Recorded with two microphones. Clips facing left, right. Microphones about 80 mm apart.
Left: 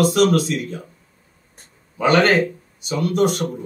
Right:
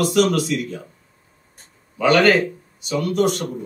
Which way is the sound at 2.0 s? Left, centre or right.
Left.